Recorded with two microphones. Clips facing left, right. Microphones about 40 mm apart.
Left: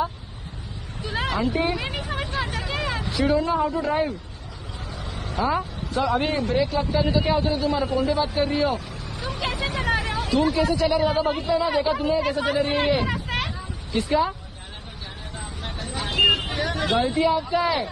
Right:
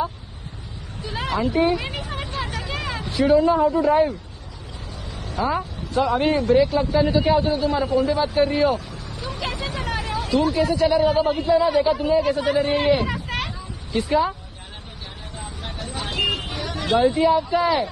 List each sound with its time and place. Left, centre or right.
1.0 s vehicle: centre
5.2 s a man's voice: centre
9.4 s a sound: centre
9.9 s a sound: left
10.6 s a man's voice: centre
12.7 s hubbub: centre
13.9 s a man's voice: centre
15.6 s vehicle: centre
16.5 s a sound: centre
17.0 s a man's voice: centre